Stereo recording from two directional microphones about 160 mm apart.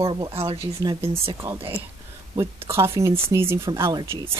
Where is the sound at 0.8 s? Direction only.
20° right (ahead or behind).